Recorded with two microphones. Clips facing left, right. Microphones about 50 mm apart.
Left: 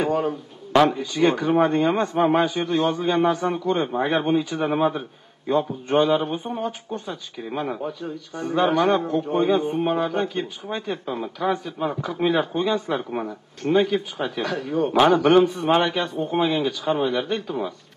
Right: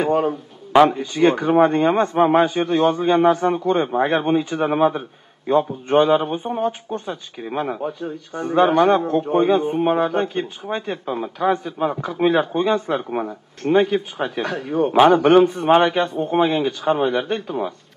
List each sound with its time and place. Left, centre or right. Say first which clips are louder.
0.1 s a man's voice: right 4 dB; right
4.6 s speech: right 4 dB; centre
5.5 s speech: right 4 dB; right
7.4 s speech: right 3 dB; centre
8.0 s a man's voice: right 3 dB; right
11.1 s speech: right 3 dB; centre
11.5 s a man's voice: right 4 dB; right
15.4 s a man's voice: right 5 dB; right